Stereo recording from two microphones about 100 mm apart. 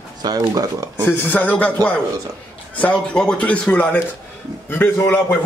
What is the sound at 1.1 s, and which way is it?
A man's voice, 15° left (ahead or behind).